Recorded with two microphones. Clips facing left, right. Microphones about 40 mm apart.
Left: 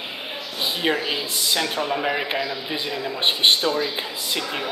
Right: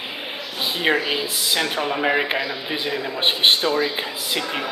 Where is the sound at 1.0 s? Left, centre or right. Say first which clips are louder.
Right 2 dB; centre.